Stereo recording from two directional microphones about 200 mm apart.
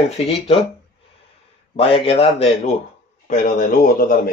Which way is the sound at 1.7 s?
30° left (ahead or behind).